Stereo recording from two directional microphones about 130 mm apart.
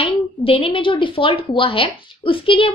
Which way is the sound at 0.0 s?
45° left (ahead or behind).